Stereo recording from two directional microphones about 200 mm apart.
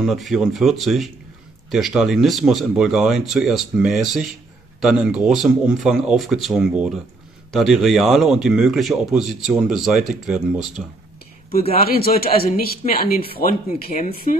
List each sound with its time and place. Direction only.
0.0 s speech: centre (ahead or behind)
11.8 s a man's voice: 50° left (ahead or behind)